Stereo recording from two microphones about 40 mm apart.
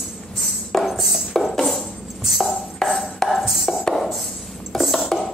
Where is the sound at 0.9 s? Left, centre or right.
Centre.